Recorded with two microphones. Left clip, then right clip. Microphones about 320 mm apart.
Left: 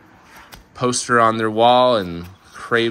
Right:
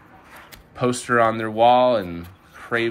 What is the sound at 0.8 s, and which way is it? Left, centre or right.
Speech, centre.